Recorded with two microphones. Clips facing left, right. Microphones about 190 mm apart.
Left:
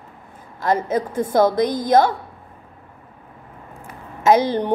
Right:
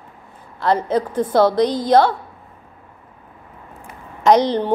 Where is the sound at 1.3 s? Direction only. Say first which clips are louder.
Right 1 dB; 50° left (ahead or behind).